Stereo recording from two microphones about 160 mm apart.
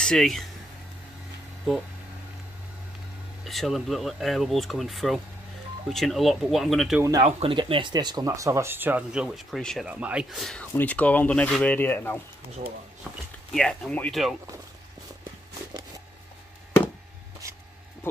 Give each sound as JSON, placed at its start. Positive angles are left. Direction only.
{"t": 0.0, "sound": "speech", "side_deg": 5}
{"t": 3.4, "sound": "speech", "side_deg": 0}
{"t": 7.0, "sound": "speech", "side_deg": -25}
{"t": 7.2, "sound": "speech", "side_deg": -45}
{"t": 7.5, "sound": "speech", "side_deg": -30}
{"t": 13.5, "sound": "speech", "side_deg": 5}